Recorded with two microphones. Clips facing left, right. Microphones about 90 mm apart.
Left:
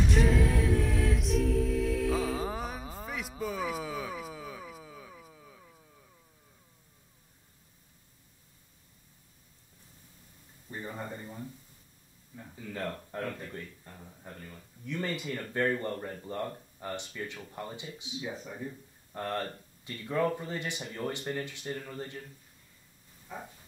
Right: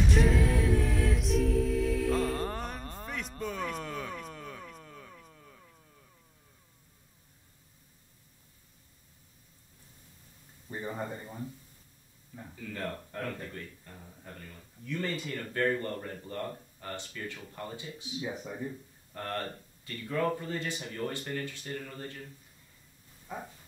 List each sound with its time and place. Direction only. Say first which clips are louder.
0.0 s a capella: even; centre (ahead or behind)
10.7 s a sound: right 3 dB; 15° right (ahead or behind)
13.1 s speech: left 1 dB; 15° left (ahead or behind)
18.2 s speech: right 2 dB; 10° right (ahead or behind)
19.1 s speech: left 2 dB; 20° left (ahead or behind)